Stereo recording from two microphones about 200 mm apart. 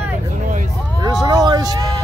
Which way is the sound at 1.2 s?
20° right (ahead or behind).